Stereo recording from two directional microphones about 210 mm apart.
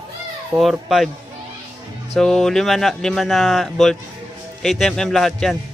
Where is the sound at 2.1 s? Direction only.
Centre (ahead or behind).